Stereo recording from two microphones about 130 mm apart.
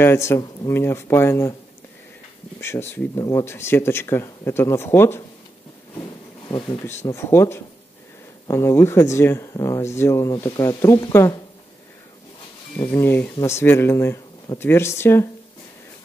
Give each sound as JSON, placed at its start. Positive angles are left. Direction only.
{"t": 0.0, "sound": "speech", "side_deg": 20}
{"t": 2.6, "sound": "speech", "side_deg": 20}
{"t": 5.9, "sound": "a sound", "side_deg": 30}
{"t": 6.9, "sound": "speech", "side_deg": 20}
{"t": 12.9, "sound": "speech", "side_deg": 20}